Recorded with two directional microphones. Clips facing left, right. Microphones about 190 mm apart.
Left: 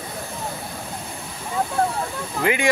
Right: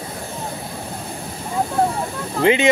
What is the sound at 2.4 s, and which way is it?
Speech, 25° right (ahead or behind).